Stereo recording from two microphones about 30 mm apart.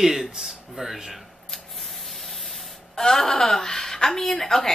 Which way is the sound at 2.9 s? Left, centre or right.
Centre.